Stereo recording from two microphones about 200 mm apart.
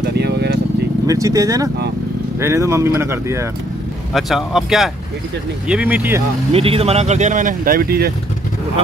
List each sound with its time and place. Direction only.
0.1 s vehicle: 55° right (ahead or behind)
1.0 s speech: 15° right (ahead or behind)
4.1 s speech: centre (ahead or behind)
6.5 s speech: 30° right (ahead or behind); by 8.1 s 50° right (ahead or behind)